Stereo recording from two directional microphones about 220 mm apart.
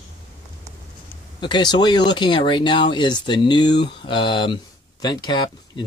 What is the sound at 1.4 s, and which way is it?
Speech, 20° left (ahead or behind).